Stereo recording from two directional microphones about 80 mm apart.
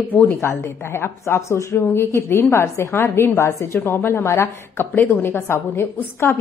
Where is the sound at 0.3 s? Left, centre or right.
Left.